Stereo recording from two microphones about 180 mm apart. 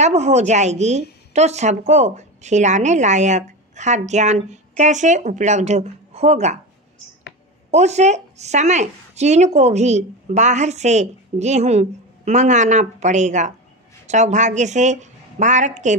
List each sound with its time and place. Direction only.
0.0 s a woman's voice: 40° right (ahead or behind)
7.7 s a woman's voice: 40° right (ahead or behind)